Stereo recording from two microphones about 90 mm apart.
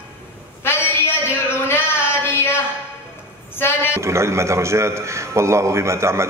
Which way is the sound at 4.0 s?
30° right (ahead or behind).